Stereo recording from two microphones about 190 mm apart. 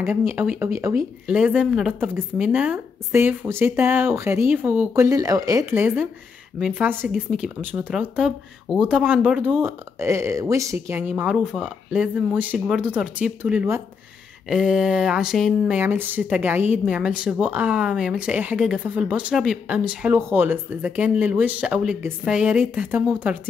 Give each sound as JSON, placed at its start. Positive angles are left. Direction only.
{"t": 0.3, "sound": "speech", "side_deg": -10}